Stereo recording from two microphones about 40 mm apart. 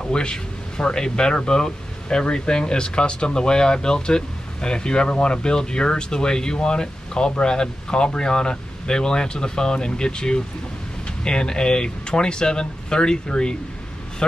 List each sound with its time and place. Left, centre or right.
0.0 s speech: left